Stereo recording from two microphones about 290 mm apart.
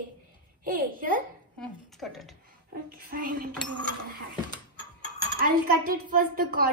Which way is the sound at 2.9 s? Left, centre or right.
Right.